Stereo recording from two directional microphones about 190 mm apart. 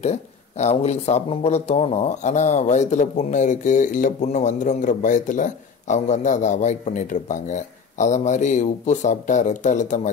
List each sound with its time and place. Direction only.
0.0 s speech: 35° left (ahead or behind)